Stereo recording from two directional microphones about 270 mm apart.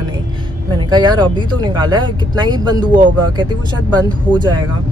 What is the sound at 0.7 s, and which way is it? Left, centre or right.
Speech, centre.